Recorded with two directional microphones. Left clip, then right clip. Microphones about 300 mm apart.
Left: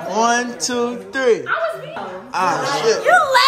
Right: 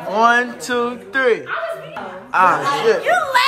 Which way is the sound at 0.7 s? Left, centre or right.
Centre.